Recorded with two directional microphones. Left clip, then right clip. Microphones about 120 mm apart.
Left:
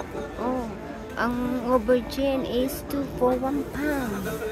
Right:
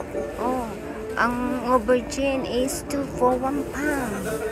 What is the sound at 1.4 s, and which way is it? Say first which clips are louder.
Speech: right 2 dB; 25° left (ahead or behind).